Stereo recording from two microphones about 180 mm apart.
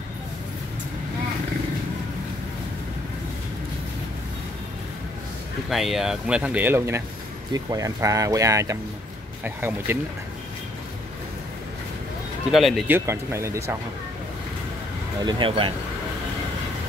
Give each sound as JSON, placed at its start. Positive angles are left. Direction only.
{"t": 5.7, "sound": "speech", "side_deg": 0}
{"t": 12.4, "sound": "speech", "side_deg": 0}
{"t": 12.8, "sound": "speech", "side_deg": -15}
{"t": 15.2, "sound": "speech", "side_deg": -25}